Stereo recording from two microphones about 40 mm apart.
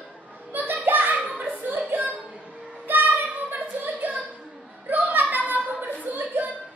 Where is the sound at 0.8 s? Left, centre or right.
Right.